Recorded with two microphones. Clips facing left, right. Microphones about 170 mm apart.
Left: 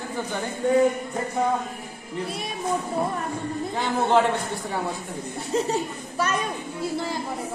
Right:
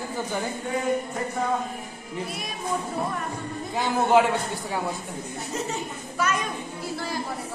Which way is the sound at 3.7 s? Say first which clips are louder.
Right 1 dB; 10° right (ahead or behind).